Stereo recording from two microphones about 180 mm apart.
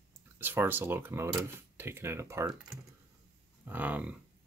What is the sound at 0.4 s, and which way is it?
Speech, 10° right (ahead or behind).